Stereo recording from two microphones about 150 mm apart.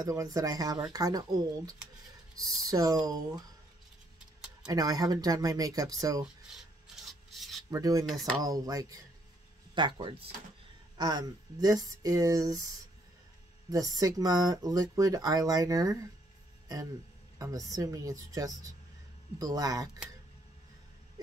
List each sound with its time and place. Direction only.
0.0 s speech: 25° right (ahead or behind)
4.6 s speech: 25° right (ahead or behind)
7.1 s rub: centre (ahead or behind)
7.7 s speech: 20° right (ahead or behind)
8.1 s speech: centre (ahead or behind)
8.4 s speech: 25° right (ahead or behind)
13.7 s speech: 25° right (ahead or behind)
17.4 s speech: 25° right (ahead or behind)